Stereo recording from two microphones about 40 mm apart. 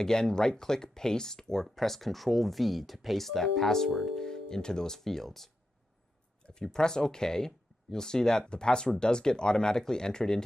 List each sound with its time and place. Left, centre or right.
0.0 s speech: centre